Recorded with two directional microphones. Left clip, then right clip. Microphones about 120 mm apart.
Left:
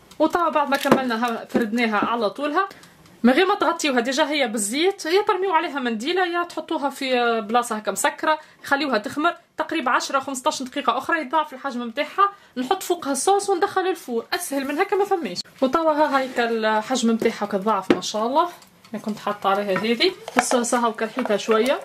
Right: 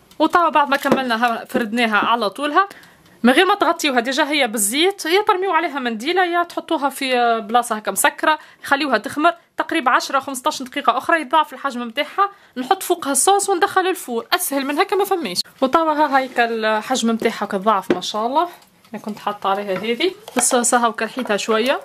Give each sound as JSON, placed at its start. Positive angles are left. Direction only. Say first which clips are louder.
{"t": 0.2, "sound": "a woman's voice", "louder": "right 5 dB", "side_deg": -50}
{"t": 19.7, "sound": "speech", "louder": "even", "side_deg": -15}
{"t": 20.5, "sound": "speech", "louder": "right 4 dB", "side_deg": -50}